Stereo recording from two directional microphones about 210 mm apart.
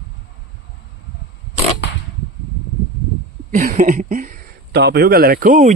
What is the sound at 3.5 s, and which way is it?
Speech, 40° right (ahead or behind).